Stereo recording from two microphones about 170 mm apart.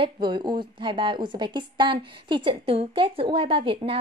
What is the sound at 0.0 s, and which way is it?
A woman's voice, 25° right (ahead or behind).